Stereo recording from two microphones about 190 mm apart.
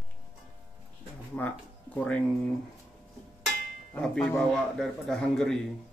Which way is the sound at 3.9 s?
5° left (ahead or behind).